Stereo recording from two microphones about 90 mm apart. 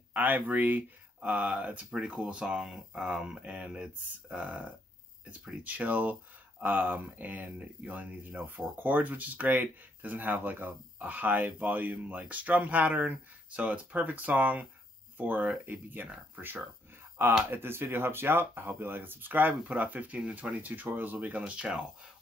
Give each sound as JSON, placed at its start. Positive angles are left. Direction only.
{"t": 0.1, "sound": "speech", "side_deg": -20}